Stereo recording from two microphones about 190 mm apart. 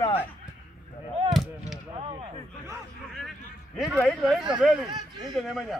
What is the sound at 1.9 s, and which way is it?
Speech, 30° right (ahead or behind).